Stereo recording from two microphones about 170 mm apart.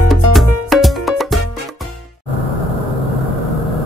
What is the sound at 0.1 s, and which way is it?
Music, centre (ahead or behind).